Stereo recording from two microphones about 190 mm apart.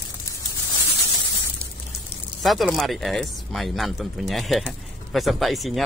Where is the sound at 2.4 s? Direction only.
Centre (ahead or behind).